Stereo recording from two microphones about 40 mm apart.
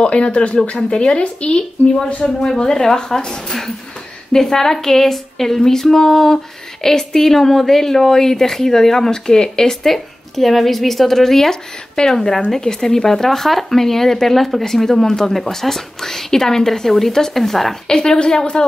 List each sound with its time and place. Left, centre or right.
0.0 s a woman's voice: left
1.8 s speech: left
2.2 s speech: centre
9.8 s speech: centre
17.8 s a woman's voice: centre